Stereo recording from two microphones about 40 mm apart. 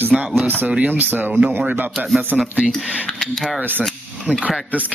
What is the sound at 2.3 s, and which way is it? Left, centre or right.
Speech, right.